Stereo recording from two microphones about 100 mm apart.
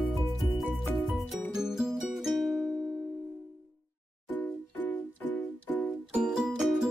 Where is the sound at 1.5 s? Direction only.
5° right (ahead or behind).